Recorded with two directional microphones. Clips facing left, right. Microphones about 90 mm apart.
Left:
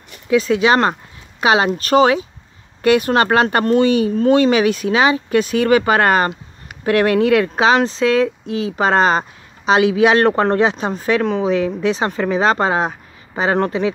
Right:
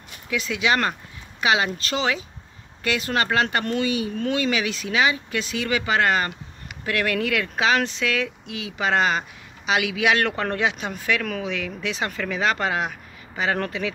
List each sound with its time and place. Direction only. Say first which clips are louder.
0.3 s speech: left 9 dB; 35° left (ahead or behind)
1.8 s speech: left 12 dB; 45° left (ahead or behind)